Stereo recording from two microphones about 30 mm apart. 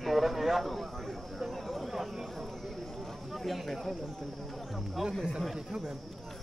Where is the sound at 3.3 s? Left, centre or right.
Centre.